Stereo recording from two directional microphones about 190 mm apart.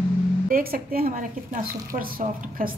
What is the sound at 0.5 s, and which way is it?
A woman's voice, 50° right (ahead or behind).